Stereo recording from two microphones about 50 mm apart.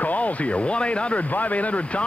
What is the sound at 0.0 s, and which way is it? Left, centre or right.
Speech, left.